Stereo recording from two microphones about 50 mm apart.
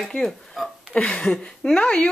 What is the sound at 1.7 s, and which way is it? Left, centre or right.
Speech, left.